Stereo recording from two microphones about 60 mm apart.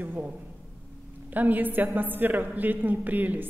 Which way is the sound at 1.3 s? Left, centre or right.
Right.